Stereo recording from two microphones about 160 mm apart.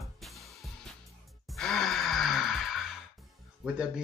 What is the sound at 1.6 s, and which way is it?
Music, centre (ahead or behind).